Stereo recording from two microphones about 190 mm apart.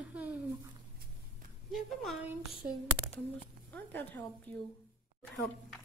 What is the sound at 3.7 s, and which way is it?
Speech, 10° left (ahead or behind).